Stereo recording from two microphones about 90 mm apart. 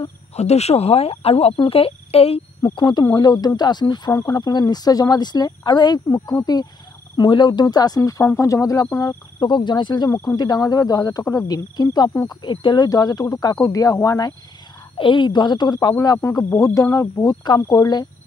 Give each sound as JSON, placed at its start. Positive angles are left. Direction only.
{"t": 0.7, "sound": "speech", "side_deg": 65}
{"t": 1.0, "sound": "speech", "side_deg": 90}
{"t": 2.6, "sound": "speech", "side_deg": 55}
{"t": 4.1, "sound": "speech", "side_deg": 35}
{"t": 4.4, "sound": "speech", "side_deg": 50}
{"t": 10.1, "sound": "speech", "side_deg": 45}
{"t": 15.0, "sound": "speech", "side_deg": 65}
{"t": 16.5, "sound": "speech", "side_deg": 40}